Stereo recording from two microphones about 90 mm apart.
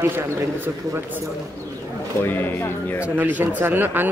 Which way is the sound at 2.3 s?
25° left (ahead or behind).